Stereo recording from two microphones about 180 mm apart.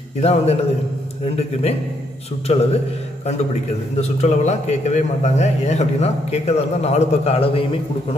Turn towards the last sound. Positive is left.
turn(degrees=30)  # may be behind; listen again after turning